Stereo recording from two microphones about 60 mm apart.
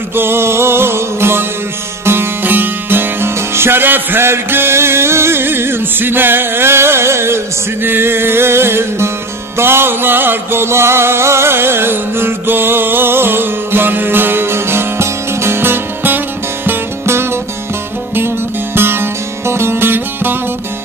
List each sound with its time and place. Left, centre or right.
0.1 s music: right